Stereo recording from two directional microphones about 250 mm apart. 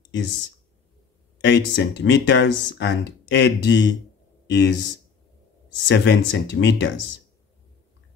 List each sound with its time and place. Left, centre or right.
1.4 s speech: left
5.9 s speech: left